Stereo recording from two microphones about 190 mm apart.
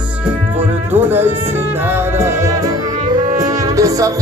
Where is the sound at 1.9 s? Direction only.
15° right (ahead or behind).